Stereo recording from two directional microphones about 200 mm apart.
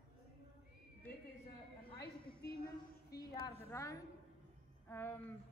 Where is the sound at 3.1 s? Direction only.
15° left (ahead or behind).